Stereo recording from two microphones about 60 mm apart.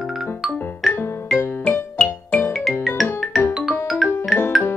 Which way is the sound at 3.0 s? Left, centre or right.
Centre.